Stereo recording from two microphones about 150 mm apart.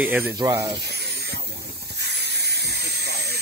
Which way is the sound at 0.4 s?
25° right (ahead or behind).